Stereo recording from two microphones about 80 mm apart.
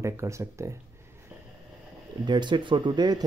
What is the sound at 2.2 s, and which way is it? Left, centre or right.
Speech, right.